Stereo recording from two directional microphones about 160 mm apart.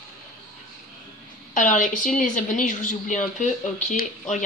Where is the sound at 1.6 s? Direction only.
55° left (ahead or behind).